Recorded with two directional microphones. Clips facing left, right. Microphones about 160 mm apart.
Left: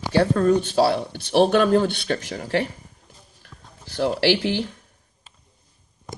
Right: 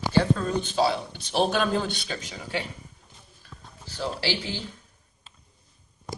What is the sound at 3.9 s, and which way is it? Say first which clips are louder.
Speech: left 9 dB; 75° left (ahead or behind).